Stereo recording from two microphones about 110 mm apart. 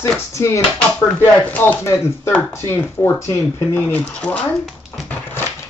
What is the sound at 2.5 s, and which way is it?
Speech, 25° left (ahead or behind).